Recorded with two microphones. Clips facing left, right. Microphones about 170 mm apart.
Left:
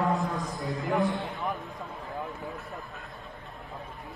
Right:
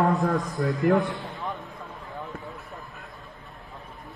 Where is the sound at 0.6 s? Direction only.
60° right (ahead or behind).